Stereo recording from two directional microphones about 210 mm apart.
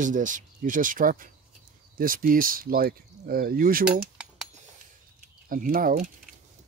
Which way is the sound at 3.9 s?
5° right (ahead or behind).